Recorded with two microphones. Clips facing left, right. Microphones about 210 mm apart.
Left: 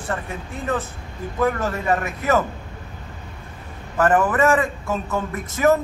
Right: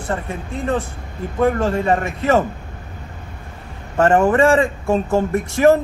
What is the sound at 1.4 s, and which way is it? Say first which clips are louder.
A man's voice: right 5 dB; 25° right (ahead or behind).